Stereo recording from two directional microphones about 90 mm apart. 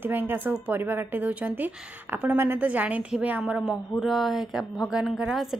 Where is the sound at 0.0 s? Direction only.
20° right (ahead or behind).